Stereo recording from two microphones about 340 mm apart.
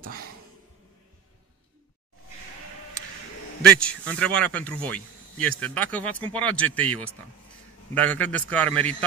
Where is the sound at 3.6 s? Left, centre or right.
Centre.